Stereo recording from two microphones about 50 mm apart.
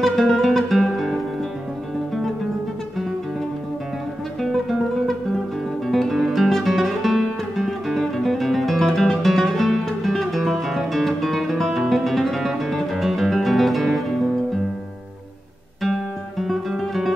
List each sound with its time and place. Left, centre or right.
0.0 s music: centre
4.4 s guitar: centre
5.9 s music: centre
15.8 s guitar: centre